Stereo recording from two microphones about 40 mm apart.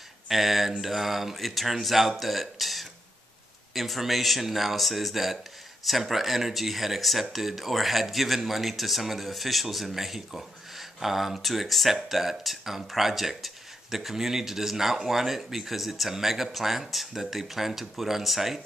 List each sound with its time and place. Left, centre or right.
0.3 s speech: centre